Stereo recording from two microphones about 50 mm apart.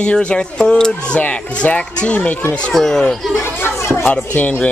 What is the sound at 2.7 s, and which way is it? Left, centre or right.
Speech, centre.